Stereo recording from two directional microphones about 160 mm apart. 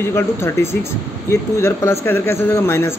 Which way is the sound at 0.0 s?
15° left (ahead or behind).